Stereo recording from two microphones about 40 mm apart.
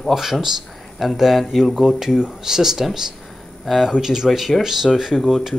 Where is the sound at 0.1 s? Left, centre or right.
Centre.